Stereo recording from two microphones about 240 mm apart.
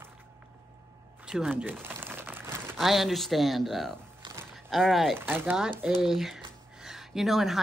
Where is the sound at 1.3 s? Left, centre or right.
Centre.